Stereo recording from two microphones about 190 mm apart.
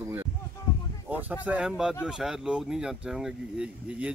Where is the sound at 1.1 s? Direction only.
10° right (ahead or behind).